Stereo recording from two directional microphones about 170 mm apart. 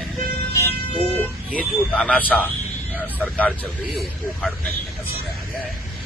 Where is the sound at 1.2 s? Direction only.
5° left (ahead or behind).